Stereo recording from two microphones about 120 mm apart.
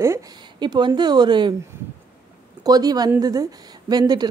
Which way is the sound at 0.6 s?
40° right (ahead or behind).